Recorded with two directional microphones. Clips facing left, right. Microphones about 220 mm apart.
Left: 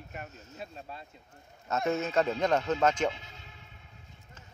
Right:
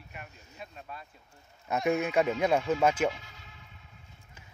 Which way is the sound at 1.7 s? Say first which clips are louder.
Right 2 dB; 15° right (ahead or behind).